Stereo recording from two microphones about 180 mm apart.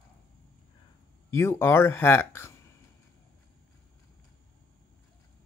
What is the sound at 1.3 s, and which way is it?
Speech, 15° left (ahead or behind).